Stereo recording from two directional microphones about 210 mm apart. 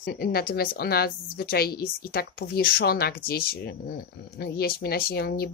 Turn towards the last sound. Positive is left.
turn(degrees=50)  # may be behind; listen again after turning